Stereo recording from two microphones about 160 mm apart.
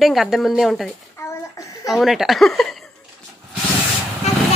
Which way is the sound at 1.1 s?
20° left (ahead or behind).